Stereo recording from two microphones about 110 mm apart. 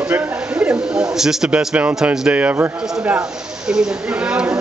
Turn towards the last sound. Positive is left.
turn(degrees=-10)  # may be behind; listen again after turning